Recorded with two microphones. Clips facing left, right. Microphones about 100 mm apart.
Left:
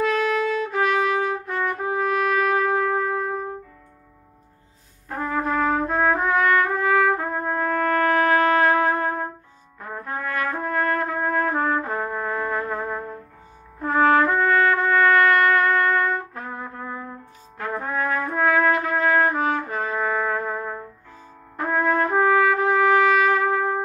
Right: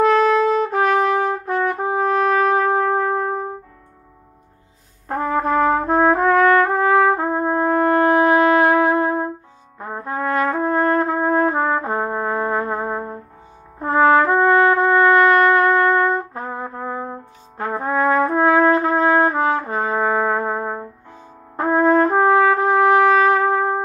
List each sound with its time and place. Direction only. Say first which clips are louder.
0.0 s trumpet: right 7 dB; 40° right (ahead or behind)
5.0 s trumpet: right 5 dB; 45° right (ahead or behind)